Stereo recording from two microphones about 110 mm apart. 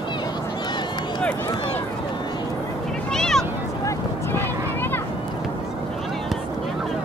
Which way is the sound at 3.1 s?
5° left (ahead or behind).